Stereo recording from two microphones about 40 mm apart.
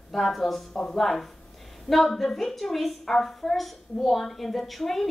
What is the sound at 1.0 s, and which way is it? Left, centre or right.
A woman's voice, centre.